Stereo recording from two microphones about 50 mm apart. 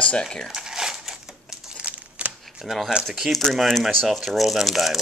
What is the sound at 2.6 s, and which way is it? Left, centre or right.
Speech, centre.